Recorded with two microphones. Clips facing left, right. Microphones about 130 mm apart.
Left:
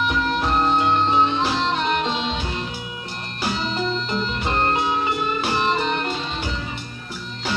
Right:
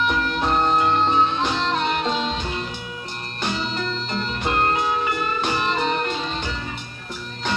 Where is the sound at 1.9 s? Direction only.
40° right (ahead or behind).